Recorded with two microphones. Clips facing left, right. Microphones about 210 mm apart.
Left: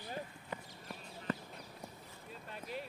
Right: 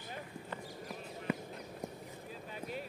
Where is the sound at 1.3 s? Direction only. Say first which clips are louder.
Right 2 dB; 10° right (ahead or behind).